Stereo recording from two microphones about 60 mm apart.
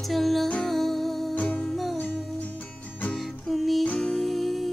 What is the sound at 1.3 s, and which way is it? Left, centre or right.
Music, left.